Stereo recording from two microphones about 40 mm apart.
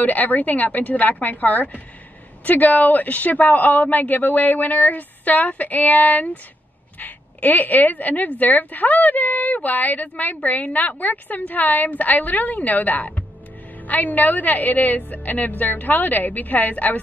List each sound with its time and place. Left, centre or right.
0.0 s speech: left